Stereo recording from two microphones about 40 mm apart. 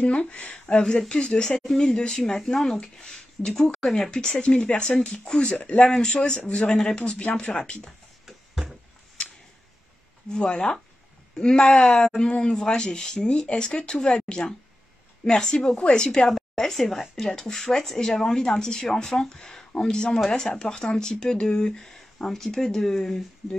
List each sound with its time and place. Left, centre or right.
0.0 s speech: left
0.7 s speech: left
2.7 s speech: left
3.1 s speech: centre
4.4 s speech: left
5.6 s speech: left
5.9 s speech: left
8.3 s a sound: centre
10.3 s speech: left
11.8 s speech: centre
12.2 s speech: left
16.3 s a woman's voice: centre